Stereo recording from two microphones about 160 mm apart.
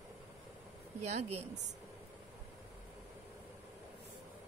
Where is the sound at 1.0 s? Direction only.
45° right (ahead or behind).